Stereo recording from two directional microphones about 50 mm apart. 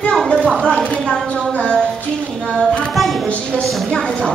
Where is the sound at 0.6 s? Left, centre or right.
Left.